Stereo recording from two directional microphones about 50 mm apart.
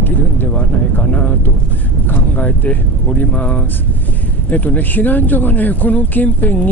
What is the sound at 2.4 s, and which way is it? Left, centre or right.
Speech, left.